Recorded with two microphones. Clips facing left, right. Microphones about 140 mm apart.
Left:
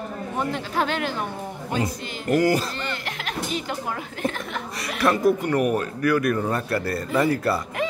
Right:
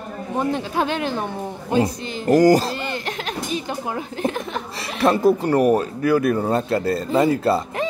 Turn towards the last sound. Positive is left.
turn(degrees=-25)  # may be behind; listen again after turning